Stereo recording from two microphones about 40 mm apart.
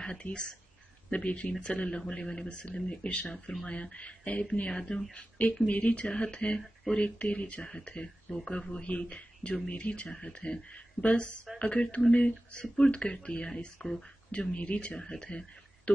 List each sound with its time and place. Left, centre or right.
0.0 s speech: left
5.7 s speech: left
15.0 s speech: left